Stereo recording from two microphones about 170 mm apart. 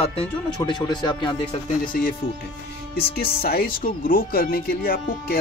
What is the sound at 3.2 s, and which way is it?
Speech, 60° left (ahead or behind).